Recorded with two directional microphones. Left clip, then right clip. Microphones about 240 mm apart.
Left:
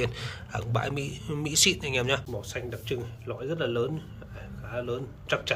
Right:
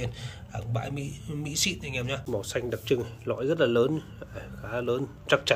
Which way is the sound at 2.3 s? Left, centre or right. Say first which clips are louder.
Right 5 dB; right.